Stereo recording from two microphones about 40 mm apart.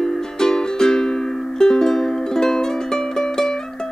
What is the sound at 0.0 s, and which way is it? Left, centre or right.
Music, centre.